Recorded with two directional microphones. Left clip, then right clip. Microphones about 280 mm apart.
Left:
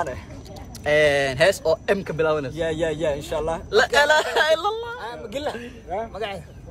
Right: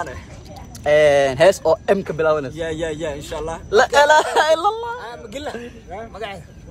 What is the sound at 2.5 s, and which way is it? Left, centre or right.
Speech, centre.